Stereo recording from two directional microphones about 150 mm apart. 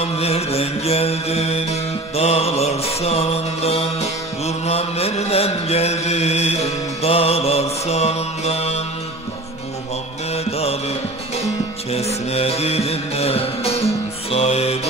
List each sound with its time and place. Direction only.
0.0 s music: 45° left (ahead or behind)
10.3 s music: 45° left (ahead or behind)
14.3 s mantra: 45° left (ahead or behind)